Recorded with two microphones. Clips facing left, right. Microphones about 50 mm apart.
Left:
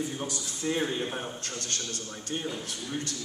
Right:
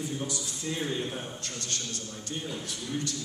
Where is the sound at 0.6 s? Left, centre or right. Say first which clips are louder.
Left 4 dB; left.